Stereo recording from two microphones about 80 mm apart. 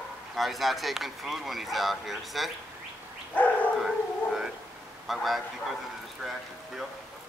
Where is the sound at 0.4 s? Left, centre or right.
Centre.